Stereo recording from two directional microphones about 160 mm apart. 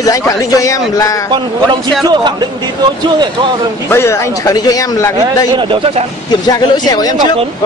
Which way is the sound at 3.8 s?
15° left (ahead or behind).